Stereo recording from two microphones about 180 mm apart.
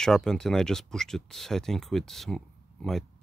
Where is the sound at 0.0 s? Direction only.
5° left (ahead or behind).